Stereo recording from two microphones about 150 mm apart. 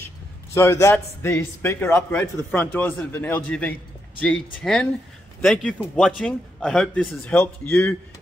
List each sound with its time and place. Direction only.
0.6 s a man's voice: 20° left (ahead or behind)